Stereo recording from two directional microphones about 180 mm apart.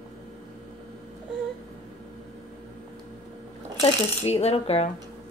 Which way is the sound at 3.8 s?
35° left (ahead or behind).